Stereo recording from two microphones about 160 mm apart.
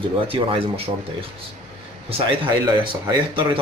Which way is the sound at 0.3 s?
35° right (ahead or behind).